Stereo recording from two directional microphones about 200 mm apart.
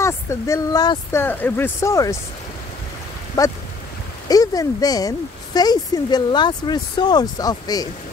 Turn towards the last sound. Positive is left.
turn(degrees=20)  # may be behind; listen again after turning